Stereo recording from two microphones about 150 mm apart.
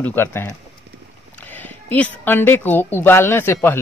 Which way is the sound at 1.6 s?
10° left (ahead or behind).